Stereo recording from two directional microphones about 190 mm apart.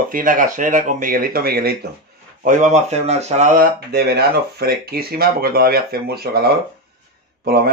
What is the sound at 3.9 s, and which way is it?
Speech, 55° right (ahead or behind).